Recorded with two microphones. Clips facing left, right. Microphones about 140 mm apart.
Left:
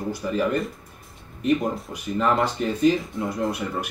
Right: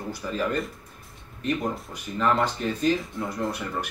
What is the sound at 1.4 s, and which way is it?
Speech, 10° left (ahead or behind).